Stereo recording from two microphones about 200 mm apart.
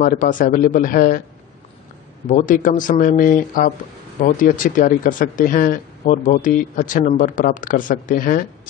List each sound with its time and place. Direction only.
0.0 s speech: 40° left (ahead or behind)
2.2 s speech: 40° left (ahead or behind)